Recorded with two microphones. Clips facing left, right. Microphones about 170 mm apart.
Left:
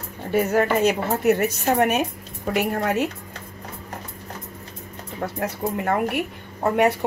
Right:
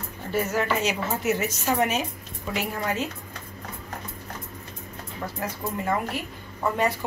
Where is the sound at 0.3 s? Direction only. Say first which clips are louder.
Left 6 dB; 55° left (ahead or behind).